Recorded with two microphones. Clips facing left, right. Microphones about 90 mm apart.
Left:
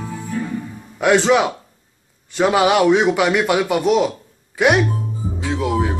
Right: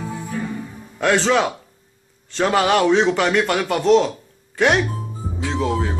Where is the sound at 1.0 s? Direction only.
15° left (ahead or behind).